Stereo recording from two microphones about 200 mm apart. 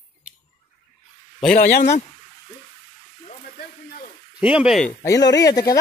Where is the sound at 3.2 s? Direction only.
45° left (ahead or behind).